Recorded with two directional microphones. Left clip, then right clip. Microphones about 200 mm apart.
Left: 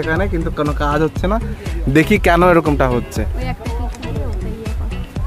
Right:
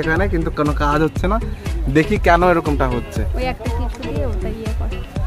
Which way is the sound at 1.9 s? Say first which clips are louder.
Left 1 dB; 40° left (ahead or behind).